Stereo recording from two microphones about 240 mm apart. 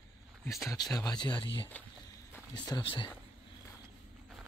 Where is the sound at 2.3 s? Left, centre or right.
Centre.